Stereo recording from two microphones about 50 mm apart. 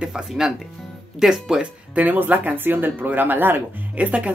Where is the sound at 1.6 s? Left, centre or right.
Right.